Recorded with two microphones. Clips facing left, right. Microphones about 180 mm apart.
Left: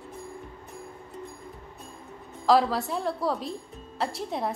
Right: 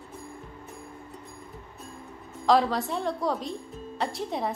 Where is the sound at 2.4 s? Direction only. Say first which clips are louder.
Left 1 dB; centre (ahead or behind).